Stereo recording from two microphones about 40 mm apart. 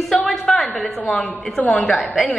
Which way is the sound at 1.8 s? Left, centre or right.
Centre.